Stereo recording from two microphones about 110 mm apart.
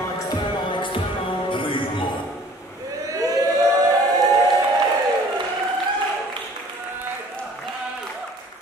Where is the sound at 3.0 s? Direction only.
30° right (ahead or behind).